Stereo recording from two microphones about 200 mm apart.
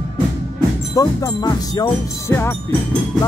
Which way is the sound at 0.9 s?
20° left (ahead or behind).